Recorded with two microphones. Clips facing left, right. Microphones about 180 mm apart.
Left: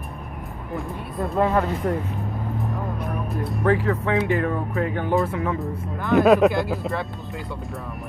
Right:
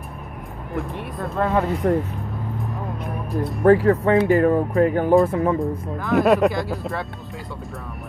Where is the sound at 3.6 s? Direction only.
45° right (ahead or behind).